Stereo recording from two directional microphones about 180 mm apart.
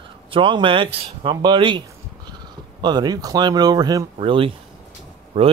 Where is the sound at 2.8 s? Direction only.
20° right (ahead or behind).